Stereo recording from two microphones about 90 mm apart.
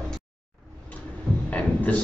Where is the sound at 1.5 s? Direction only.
15° left (ahead or behind).